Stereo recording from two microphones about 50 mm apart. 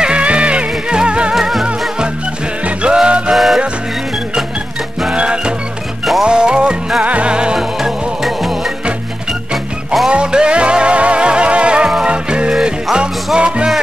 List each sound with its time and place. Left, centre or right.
0.0 s music: right
1.3 s music: centre
2.6 s music: right
3.3 s music: centre
5.1 s music: right
7.5 s music: centre
10.0 s music: centre